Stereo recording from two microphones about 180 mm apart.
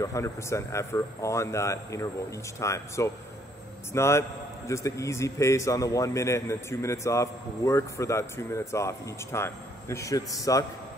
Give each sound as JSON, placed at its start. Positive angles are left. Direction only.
{"t": 0.0, "sound": "a man's voice", "side_deg": 15}